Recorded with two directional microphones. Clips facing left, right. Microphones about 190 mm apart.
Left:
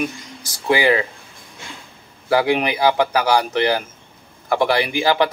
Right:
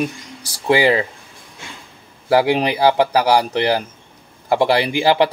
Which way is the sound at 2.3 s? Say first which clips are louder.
Right 2 dB; 30° right (ahead or behind).